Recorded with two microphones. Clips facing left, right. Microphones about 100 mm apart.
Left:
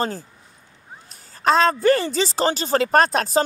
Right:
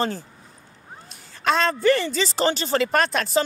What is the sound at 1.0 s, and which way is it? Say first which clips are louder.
A woman's voice: left 3 dB; 40° left (ahead or behind).